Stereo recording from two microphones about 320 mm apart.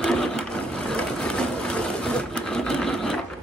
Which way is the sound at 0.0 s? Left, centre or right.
Centre.